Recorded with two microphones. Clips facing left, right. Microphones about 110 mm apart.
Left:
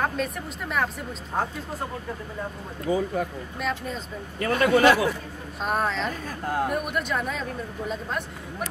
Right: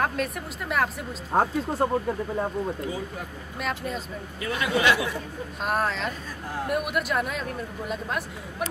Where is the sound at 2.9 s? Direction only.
50° left (ahead or behind).